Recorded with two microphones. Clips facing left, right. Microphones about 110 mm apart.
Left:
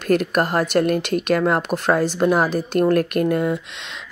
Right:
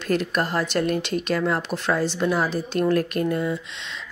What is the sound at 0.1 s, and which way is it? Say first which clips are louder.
Speech: left 5 dB; 50° left (ahead or behind).